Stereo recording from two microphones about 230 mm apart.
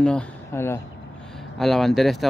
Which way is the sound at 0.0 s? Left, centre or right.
Centre.